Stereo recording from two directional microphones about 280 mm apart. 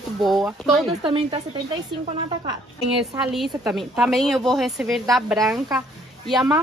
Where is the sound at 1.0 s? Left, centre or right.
Centre.